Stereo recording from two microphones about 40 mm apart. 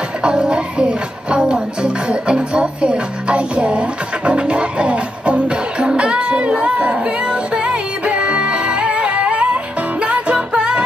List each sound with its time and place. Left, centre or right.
0.2 s music: right